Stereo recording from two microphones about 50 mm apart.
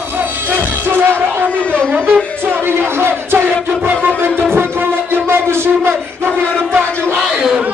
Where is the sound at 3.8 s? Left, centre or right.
Right.